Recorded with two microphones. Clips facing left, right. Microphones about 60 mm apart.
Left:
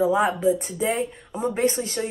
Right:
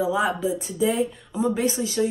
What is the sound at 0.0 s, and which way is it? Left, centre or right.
Speech, left.